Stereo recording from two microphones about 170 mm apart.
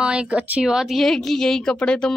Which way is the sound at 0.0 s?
5° right (ahead or behind).